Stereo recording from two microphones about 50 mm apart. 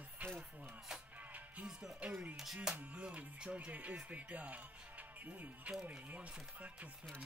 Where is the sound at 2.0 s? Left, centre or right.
Right.